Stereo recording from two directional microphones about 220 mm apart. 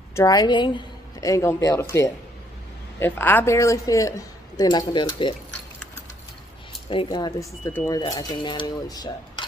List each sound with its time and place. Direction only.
0.1 s a woman's voice: 15° left (ahead or behind)
6.9 s a woman's voice: 20° left (ahead or behind)